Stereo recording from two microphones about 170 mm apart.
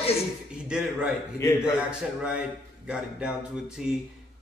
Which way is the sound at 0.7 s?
5° right (ahead or behind).